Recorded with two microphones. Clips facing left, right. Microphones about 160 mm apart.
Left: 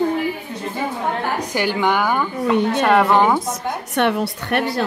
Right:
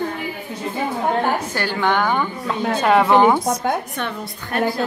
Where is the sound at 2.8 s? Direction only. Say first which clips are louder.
Right 3 dB; centre (ahead or behind).